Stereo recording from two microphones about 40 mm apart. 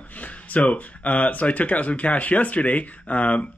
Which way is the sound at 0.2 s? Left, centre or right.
Left.